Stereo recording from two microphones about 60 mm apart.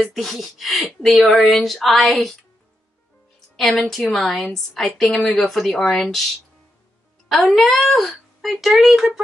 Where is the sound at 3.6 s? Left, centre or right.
Centre.